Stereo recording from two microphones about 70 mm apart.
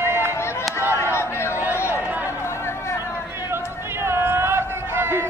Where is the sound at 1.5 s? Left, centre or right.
Right.